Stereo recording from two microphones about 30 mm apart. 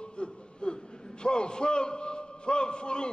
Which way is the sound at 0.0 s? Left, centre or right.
Left.